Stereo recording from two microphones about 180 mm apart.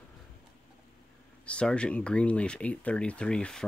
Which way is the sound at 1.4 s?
5° left (ahead or behind).